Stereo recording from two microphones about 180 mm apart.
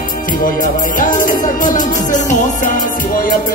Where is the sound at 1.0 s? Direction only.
45° left (ahead or behind).